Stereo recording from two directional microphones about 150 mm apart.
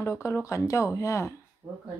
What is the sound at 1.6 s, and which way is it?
Speech, 20° right (ahead or behind).